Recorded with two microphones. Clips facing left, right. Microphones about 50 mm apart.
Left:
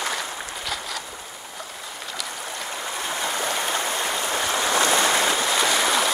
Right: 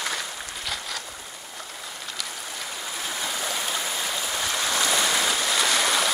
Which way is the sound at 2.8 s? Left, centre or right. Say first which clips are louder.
Left 4 dB; centre.